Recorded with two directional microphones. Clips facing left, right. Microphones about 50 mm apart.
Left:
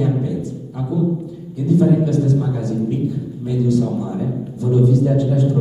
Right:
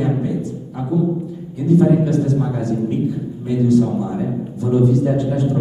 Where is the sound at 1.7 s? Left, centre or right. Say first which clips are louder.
Right 1 dB; right.